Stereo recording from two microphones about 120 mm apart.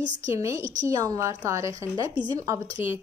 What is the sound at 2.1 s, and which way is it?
Speech, 35° right (ahead or behind).